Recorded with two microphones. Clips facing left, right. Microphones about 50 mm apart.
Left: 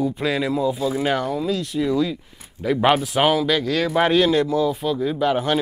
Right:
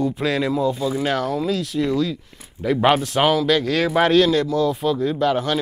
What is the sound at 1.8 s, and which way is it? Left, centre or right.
Speech, centre.